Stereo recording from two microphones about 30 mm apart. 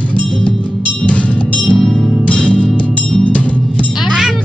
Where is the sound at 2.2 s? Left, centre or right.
Left.